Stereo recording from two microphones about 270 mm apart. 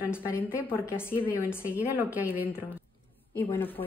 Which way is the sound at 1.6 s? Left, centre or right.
Centre.